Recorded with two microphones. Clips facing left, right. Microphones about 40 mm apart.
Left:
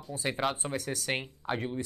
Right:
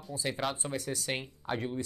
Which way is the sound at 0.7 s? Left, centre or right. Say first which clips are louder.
Left 1 dB; left.